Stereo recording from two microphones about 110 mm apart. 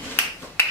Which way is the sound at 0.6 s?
25° left (ahead or behind).